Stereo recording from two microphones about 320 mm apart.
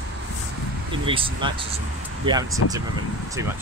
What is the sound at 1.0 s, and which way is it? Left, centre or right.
Speech, centre.